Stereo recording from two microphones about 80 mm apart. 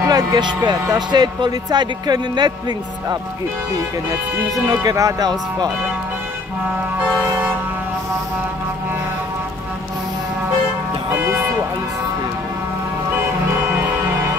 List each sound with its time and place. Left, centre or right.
0.1 s a man's voice: right
4.8 s speech: right